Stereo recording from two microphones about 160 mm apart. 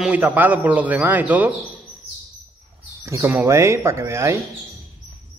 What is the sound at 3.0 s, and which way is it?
A man's voice, 15° right (ahead or behind).